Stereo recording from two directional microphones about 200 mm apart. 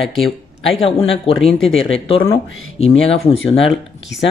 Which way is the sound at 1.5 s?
Centre (ahead or behind).